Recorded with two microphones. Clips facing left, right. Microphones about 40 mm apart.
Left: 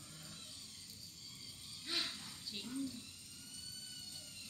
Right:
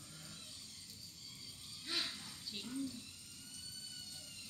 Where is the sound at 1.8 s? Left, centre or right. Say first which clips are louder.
Even; centre.